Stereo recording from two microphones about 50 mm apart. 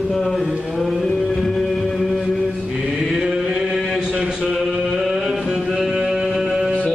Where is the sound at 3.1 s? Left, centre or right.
Centre.